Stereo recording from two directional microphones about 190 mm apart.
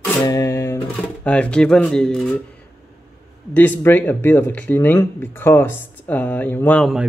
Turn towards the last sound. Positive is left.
turn(degrees=0)  # may be behind; listen again after turning